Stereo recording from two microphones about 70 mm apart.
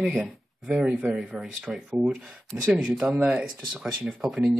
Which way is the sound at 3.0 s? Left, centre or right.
Centre.